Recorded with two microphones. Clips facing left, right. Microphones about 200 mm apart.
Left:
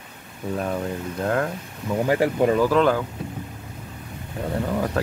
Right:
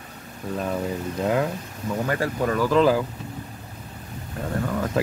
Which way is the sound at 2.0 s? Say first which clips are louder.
Left 6 dB; 20° left (ahead or behind).